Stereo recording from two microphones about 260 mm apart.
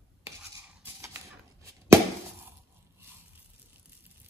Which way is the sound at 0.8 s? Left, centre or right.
Centre.